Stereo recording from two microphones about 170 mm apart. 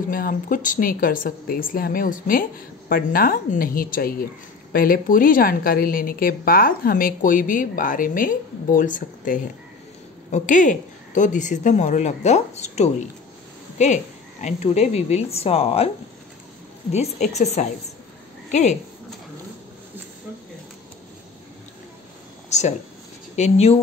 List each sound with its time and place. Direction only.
0.1 s a woman's voice: 55° left (ahead or behind); by 15.9 s 35° left (ahead or behind)
16.9 s speech: 40° left (ahead or behind)
22.5 s speech: 40° left (ahead or behind)